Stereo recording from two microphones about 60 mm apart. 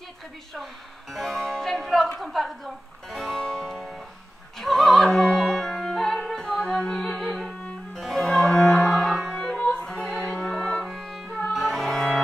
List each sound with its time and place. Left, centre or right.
1.1 s music: centre
4.6 s opera: centre
6.8 s music: centre